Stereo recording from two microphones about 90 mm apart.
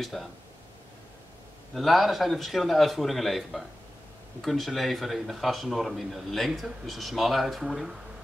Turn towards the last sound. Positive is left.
turn(degrees=-5)  # may be behind; listen again after turning